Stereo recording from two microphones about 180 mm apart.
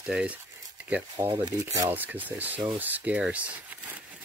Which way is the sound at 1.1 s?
25° right (ahead or behind).